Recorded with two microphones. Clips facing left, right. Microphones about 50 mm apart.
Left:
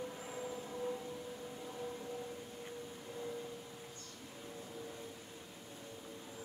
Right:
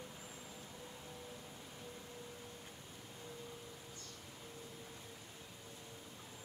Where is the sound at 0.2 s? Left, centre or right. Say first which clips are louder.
Left 9 dB; left.